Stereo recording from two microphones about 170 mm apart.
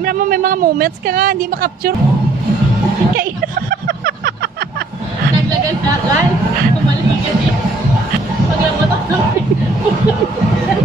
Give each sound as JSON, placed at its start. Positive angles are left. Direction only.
{"t": 0.0, "sound": "speech", "side_deg": -55}